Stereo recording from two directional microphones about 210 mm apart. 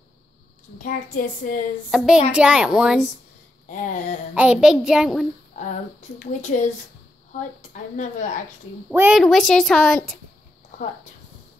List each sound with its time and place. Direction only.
0.7 s speech: 40° left (ahead or behind)
1.9 s a woman's voice: centre (ahead or behind)
3.7 s speech: 35° left (ahead or behind)
4.3 s a woman's voice: 5° right (ahead or behind)
5.9 s speech: 35° left (ahead or behind)
7.7 s speech: 35° left (ahead or behind)
8.9 s a woman's voice: 10° right (ahead or behind)
9.2 s a woman's voice: centre (ahead or behind)